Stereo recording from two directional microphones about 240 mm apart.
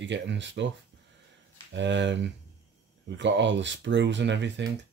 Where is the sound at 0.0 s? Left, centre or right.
Right.